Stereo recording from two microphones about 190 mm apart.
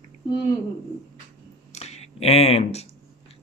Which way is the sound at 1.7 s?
35° left (ahead or behind).